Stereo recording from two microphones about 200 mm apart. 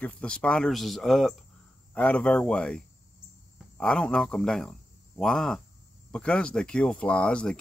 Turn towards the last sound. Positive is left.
turn(degrees=5)  # may be behind; listen again after turning